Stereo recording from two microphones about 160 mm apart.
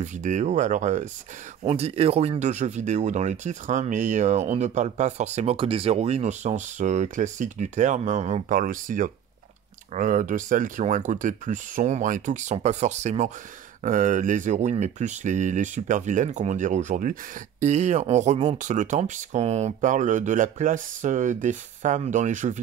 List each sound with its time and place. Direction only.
0.0 s speech: 50° right (ahead or behind)
1.6 s speech: 40° right (ahead or behind)